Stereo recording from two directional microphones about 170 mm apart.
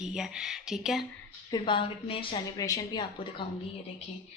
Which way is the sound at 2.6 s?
20° left (ahead or behind).